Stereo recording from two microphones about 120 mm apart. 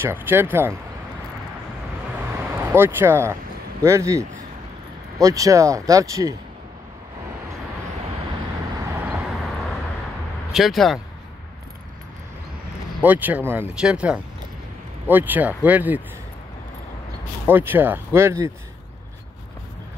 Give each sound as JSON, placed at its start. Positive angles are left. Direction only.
{"t": 0.0, "sound": "speech", "side_deg": -20}
{"t": 2.5, "sound": "speech", "side_deg": -20}
{"t": 10.5, "sound": "speech", "side_deg": 0}
{"t": 13.0, "sound": "speech", "side_deg": -15}
{"t": 17.5, "sound": "speech", "side_deg": -15}